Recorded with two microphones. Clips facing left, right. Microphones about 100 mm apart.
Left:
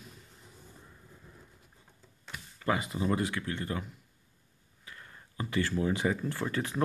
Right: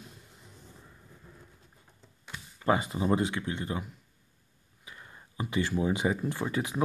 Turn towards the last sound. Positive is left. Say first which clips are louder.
# right 1 dB
turn(degrees=-15)  # may be behind; listen again after turning